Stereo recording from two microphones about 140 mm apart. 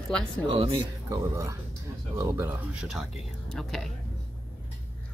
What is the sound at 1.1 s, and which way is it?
Speech, 20° right (ahead or behind).